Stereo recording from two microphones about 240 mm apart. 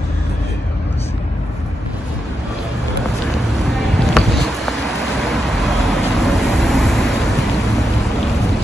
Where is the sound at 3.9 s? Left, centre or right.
Centre.